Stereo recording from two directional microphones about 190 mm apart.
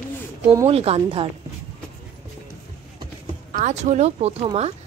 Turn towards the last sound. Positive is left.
turn(degrees=-35)  # may be behind; listen again after turning